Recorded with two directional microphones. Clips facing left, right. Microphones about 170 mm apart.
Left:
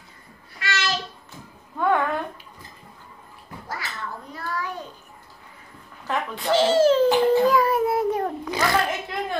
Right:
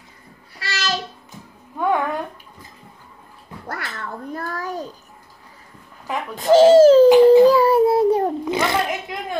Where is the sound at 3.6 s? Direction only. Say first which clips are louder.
Right 3 dB; 55° right (ahead or behind); by 4.9 s 40° right (ahead or behind).